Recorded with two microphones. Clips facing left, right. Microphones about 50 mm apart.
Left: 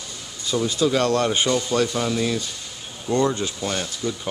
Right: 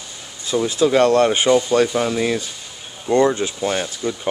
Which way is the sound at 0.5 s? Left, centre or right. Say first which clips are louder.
Right 4 dB; right.